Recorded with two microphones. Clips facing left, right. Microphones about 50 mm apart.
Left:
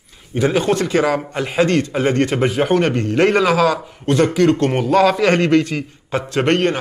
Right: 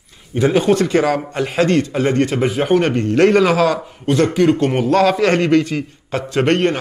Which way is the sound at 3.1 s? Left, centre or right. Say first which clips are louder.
Right 3 dB; centre.